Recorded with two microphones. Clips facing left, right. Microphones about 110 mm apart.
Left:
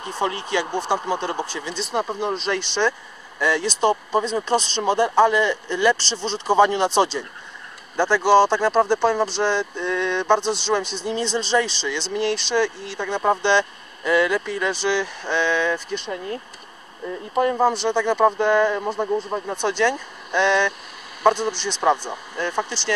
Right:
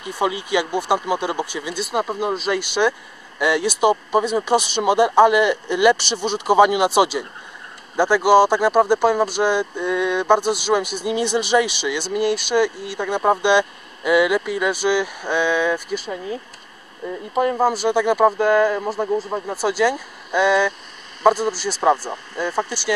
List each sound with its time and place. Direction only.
0.1 s speech: 10° right (ahead or behind)